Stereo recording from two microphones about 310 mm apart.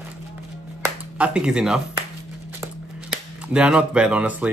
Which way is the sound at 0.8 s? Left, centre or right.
Centre.